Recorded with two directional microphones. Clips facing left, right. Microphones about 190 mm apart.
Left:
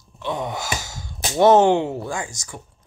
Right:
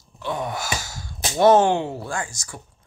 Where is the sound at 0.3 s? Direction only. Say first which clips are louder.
Left 1 dB; 20° left (ahead or behind).